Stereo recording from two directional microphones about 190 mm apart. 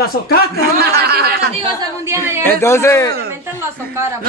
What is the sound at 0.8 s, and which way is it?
Speech, 55° right (ahead or behind).